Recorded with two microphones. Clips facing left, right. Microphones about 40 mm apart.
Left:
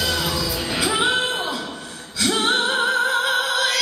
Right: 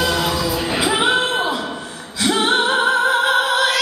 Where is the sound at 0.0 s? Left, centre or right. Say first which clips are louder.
Right 4 dB; centre.